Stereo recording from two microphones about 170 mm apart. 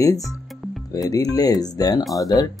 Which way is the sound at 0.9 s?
20° left (ahead or behind).